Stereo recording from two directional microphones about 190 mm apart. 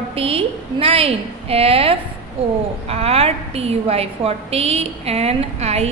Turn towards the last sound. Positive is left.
turn(degrees=-35)  # may be behind; listen again after turning